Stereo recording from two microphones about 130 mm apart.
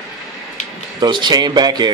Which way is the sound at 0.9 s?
35° right (ahead or behind).